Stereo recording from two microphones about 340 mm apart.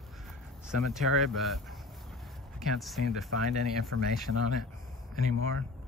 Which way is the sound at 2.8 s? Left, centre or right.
Centre.